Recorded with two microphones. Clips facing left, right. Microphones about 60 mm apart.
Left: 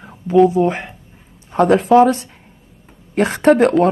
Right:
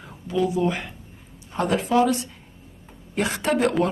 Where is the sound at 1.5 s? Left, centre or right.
Left.